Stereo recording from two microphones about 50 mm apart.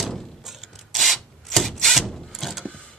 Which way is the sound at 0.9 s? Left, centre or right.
Centre.